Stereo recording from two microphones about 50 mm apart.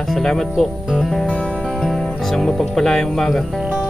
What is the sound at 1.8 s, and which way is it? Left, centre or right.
Speech, centre.